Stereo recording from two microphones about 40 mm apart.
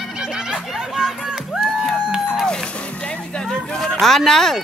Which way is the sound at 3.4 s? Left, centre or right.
Centre.